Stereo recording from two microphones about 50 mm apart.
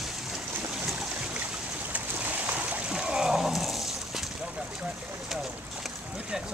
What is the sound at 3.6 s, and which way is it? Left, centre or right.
Horse, centre.